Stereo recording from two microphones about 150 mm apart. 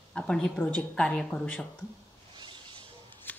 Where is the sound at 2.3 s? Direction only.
30° right (ahead or behind).